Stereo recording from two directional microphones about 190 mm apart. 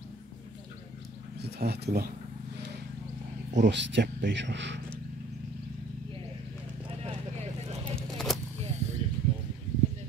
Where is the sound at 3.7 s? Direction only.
70° right (ahead or behind).